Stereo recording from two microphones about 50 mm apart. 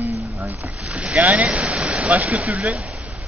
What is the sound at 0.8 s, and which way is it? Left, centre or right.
Speech, centre.